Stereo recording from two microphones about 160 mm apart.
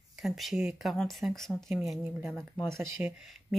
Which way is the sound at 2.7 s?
15° right (ahead or behind).